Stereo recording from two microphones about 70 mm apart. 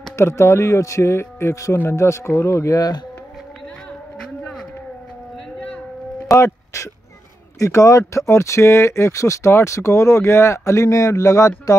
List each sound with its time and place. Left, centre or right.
0.2 s speech: left
6.3 s speech: left